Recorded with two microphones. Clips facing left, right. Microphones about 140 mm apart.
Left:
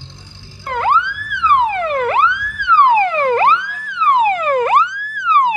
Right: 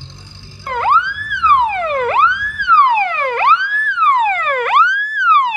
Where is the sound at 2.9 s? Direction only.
35° left (ahead or behind).